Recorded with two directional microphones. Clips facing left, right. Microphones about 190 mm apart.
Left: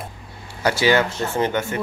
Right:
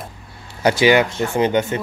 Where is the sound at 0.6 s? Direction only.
15° right (ahead or behind).